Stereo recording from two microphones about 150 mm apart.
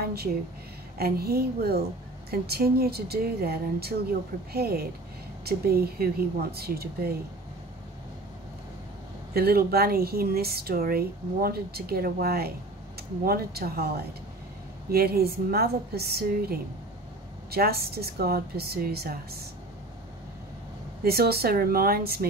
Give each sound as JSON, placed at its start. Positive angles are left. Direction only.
{"t": 0.0, "sound": "a sound", "side_deg": -90}
{"t": 0.9, "sound": "speech", "side_deg": -90}
{"t": 9.3, "sound": "speech", "side_deg": -90}
{"t": 17.5, "sound": "speech", "side_deg": -90}
{"t": 21.0, "sound": "speech", "side_deg": -90}